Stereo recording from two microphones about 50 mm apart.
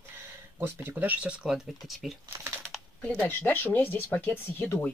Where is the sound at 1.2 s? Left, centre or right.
Right.